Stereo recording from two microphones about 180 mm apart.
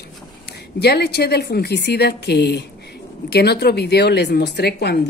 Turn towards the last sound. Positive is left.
turn(degrees=65)  # may be behind; listen again after turning